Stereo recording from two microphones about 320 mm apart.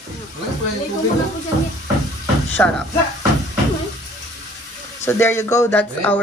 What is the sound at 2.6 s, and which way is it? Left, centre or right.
Speech, centre.